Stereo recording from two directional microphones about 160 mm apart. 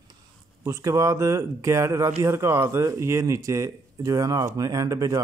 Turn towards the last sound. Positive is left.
turn(degrees=-20)  # may be behind; listen again after turning